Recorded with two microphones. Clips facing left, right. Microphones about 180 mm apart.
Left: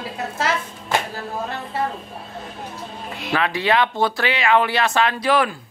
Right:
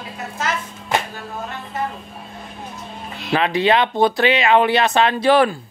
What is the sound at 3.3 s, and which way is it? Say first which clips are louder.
Speech: right 3 dB; 20° right (ahead or behind).